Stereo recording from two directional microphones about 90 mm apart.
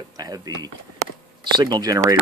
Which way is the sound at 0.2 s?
45° right (ahead or behind).